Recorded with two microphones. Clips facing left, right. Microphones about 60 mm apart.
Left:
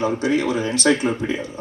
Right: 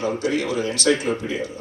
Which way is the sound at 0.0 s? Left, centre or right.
Left.